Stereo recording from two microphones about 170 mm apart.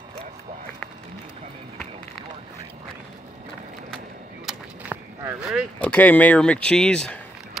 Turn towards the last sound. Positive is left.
turn(degrees=5)  # may be behind; listen again after turning